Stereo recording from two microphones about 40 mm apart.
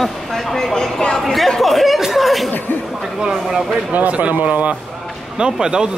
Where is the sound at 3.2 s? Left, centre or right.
Centre.